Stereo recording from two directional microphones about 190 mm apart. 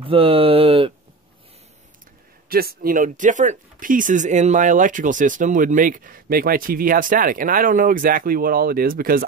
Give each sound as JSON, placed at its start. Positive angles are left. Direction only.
{"t": 0.0, "sound": "speech", "side_deg": -30}
{"t": 2.5, "sound": "speech", "side_deg": -50}